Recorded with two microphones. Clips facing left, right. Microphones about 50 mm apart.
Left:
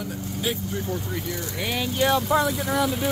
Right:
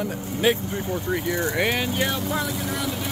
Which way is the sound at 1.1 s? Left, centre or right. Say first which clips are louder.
Right 7 dB; right.